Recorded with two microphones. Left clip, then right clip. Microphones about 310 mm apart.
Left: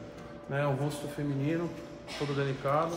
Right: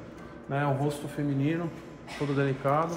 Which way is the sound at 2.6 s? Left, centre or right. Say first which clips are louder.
Right 2 dB; right.